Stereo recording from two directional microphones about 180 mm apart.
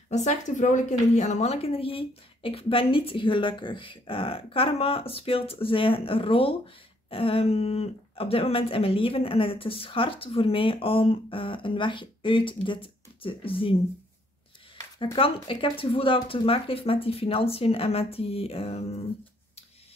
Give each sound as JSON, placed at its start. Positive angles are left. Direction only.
{"t": 0.1, "sound": "speech", "side_deg": 40}
{"t": 15.1, "sound": "speech", "side_deg": 30}